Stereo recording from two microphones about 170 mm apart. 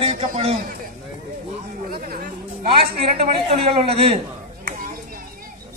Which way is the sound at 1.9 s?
65° right (ahead or behind).